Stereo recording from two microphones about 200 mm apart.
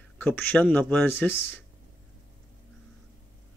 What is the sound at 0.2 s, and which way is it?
Speech, 10° left (ahead or behind).